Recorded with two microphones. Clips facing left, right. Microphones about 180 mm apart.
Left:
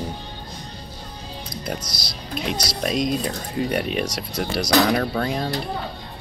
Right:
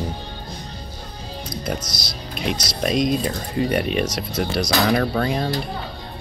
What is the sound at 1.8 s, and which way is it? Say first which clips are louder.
Speech: right 2 dB; 30° left (ahead or behind).